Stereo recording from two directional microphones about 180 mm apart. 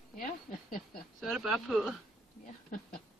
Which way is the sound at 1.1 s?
Centre (ahead or behind).